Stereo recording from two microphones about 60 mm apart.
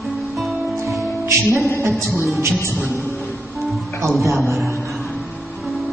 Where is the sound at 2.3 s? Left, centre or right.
Right.